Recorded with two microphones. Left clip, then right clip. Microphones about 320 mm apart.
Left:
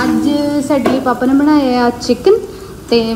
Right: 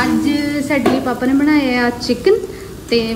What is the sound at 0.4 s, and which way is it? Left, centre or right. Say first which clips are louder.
Hands: left 4 dB; left.